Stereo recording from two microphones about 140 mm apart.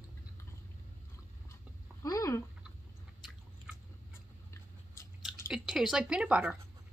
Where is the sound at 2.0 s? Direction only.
25° left (ahead or behind).